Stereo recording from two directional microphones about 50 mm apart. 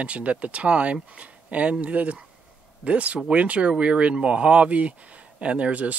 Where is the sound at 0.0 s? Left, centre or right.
Right.